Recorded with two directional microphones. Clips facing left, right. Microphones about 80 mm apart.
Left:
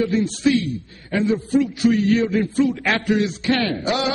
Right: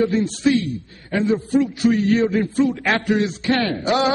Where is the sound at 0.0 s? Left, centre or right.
Right.